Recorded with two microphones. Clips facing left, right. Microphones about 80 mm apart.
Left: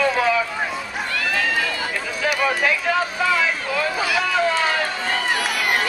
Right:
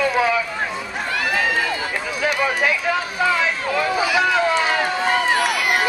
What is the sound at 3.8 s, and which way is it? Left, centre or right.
Run, centre.